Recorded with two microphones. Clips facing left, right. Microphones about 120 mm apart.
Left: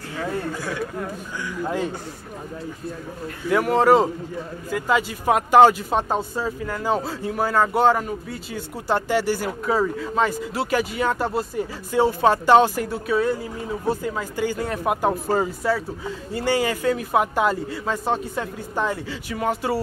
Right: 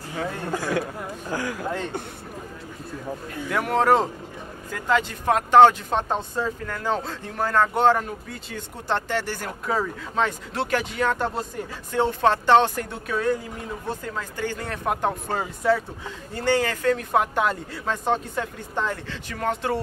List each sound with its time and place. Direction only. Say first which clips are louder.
1.3 s a man's voice: right 4 dB; 90° right
3.4 s speech: left 3 dB; centre (ahead or behind)